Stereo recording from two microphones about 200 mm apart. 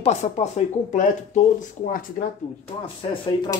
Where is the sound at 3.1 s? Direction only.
25° left (ahead or behind).